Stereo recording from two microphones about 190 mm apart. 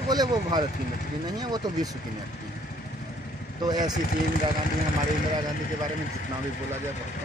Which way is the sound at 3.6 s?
20° right (ahead or behind).